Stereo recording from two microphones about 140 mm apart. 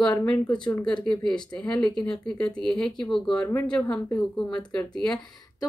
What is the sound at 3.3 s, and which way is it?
A woman's voice, 15° left (ahead or behind).